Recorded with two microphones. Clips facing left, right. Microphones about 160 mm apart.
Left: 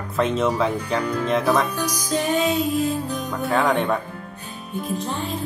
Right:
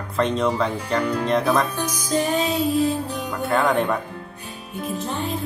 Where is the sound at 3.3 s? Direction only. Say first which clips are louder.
Even; centre (ahead or behind).